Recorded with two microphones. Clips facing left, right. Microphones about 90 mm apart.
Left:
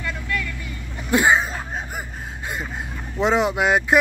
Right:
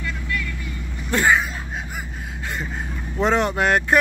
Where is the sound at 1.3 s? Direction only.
35° left (ahead or behind).